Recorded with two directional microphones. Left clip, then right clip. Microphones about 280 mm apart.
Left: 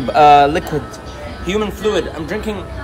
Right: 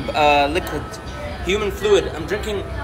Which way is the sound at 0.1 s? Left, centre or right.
Left.